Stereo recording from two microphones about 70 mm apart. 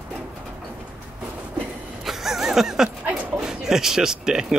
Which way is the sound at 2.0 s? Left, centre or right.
Centre.